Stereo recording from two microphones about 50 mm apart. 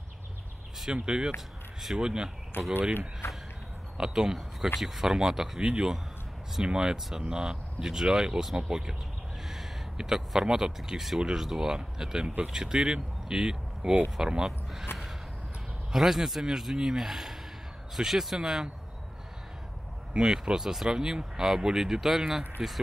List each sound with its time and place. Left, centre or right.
0.9 s speech: centre
3.2 s a sound: left
4.0 s speech: centre
5.6 s speech: centre
15.9 s speech: centre
20.2 s speech: centre